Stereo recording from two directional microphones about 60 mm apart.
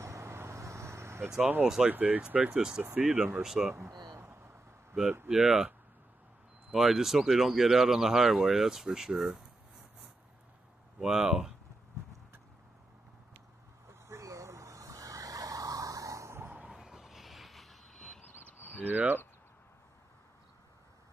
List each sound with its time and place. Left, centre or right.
0.0 s vehicle: right
1.4 s speech: right
3.3 s speech: centre
5.3 s speech: centre
6.7 s speech: centre
11.0 s speech: centre
13.8 s vehicle: right
16.6 s vehicle: centre
18.2 s a sound: left
18.8 s speech: right